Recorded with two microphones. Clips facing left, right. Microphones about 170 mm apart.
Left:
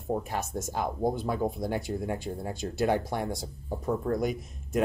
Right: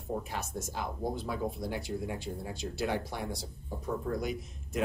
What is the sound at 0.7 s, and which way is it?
Speech, 50° left (ahead or behind).